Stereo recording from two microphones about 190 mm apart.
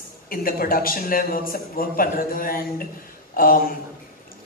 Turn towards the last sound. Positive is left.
turn(degrees=50)  # may be behind; listen again after turning